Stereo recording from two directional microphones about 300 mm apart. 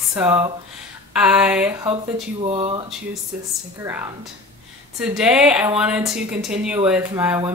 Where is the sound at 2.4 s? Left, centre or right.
Centre.